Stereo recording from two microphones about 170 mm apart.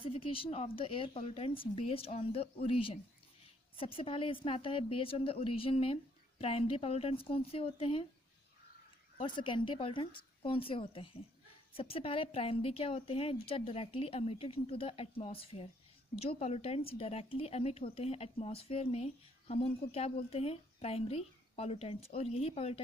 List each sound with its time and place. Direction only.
0.0 s speech: 30° left (ahead or behind)
9.2 s speech: 30° left (ahead or behind)